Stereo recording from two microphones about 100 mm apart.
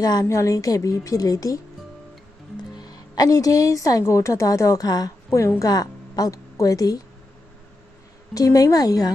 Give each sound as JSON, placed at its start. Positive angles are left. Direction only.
{"t": 0.0, "sound": "a woman's voice", "side_deg": 40}
{"t": 3.2, "sound": "a woman's voice", "side_deg": 40}
{"t": 8.4, "sound": "a woman's voice", "side_deg": 35}